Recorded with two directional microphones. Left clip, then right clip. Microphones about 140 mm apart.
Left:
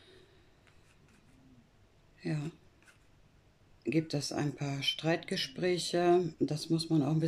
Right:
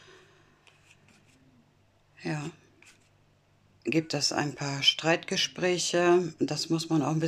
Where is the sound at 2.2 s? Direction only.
30° left (ahead or behind).